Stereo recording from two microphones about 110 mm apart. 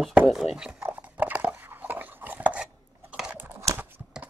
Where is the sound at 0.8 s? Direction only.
20° right (ahead or behind).